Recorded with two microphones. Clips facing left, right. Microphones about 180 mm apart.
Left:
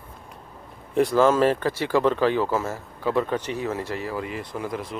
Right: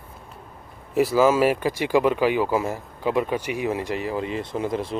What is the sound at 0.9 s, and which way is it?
Speech, 5° right (ahead or behind).